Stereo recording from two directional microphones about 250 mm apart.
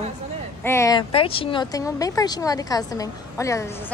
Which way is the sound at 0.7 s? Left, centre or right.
Centre.